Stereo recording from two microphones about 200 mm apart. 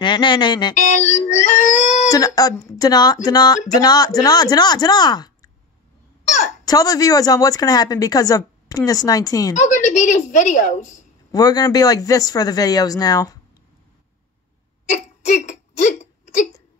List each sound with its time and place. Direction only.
0.0 s speech: 25° left (ahead or behind)
0.7 s a woman's voice: 35° left (ahead or behind)
1.3 s a sound: 35° left (ahead or behind)
2.0 s speech: 20° left (ahead or behind)
6.2 s a child's voice: 35° left (ahead or behind)
6.6 s a woman's voice: 20° left (ahead or behind)
9.6 s a woman's voice: 40° left (ahead or behind)
11.3 s a woman's voice: 20° left (ahead or behind)
14.9 s hiccup: 35° left (ahead or behind)